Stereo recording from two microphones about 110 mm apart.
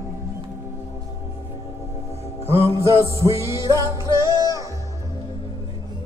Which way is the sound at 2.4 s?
65° left (ahead or behind).